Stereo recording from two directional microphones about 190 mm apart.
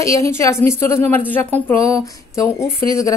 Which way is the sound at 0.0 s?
15° left (ahead or behind).